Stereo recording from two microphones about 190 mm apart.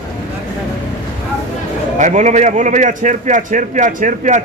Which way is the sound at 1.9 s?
40° right (ahead or behind).